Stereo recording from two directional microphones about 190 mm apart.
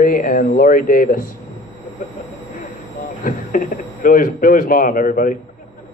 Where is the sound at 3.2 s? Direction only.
45° left (ahead or behind).